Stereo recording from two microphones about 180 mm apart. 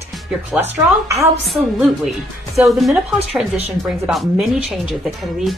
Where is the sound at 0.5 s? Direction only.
15° right (ahead or behind).